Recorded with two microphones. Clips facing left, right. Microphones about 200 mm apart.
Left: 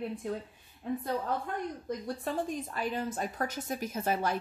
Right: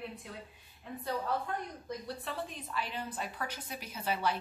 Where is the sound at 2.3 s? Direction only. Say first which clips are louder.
Left 10 dB; 45° left (ahead or behind).